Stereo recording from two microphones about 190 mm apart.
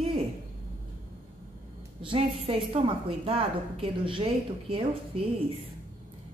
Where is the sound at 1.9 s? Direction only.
30° right (ahead or behind).